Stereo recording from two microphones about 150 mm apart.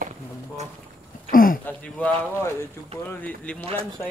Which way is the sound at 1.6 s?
10° left (ahead or behind).